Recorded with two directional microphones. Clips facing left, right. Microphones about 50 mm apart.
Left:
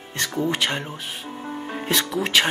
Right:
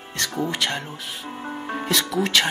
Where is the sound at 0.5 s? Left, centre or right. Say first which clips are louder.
Left 1 dB; left.